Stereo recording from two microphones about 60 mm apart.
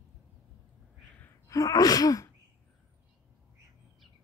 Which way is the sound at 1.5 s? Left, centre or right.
Left.